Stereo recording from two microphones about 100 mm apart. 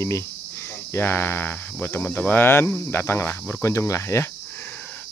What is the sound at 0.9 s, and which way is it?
Speech, 20° left (ahead or behind).